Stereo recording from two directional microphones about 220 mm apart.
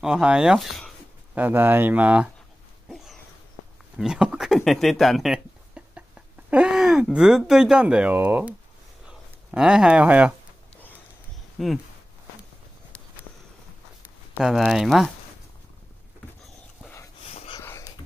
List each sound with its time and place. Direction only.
0.0 s speech: 5° right (ahead or behind)
4.0 s speech: 5° right (ahead or behind)
11.5 s speech: centre (ahead or behind)
14.0 s speech: centre (ahead or behind)
17.3 s wheeze: 30° left (ahead or behind)
17.6 s wheeze: 10° left (ahead or behind)